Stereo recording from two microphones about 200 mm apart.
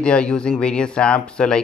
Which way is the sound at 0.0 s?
5° left (ahead or behind).